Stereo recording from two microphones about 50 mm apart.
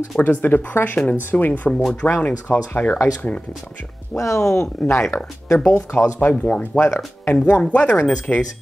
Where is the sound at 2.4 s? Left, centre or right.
Left.